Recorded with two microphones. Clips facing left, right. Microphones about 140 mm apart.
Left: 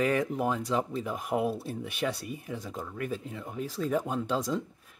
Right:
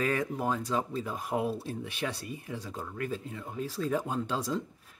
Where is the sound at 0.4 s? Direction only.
15° left (ahead or behind).